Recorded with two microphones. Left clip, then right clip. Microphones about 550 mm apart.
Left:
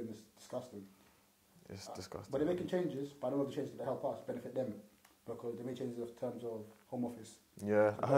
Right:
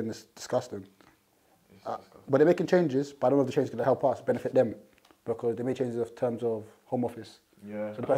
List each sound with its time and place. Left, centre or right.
0.4 s speech: right
1.7 s speech: left
2.3 s speech: right
7.6 s speech: left